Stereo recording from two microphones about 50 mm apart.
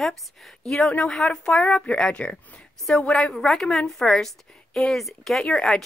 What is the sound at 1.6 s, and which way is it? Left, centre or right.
A woman's voice, left.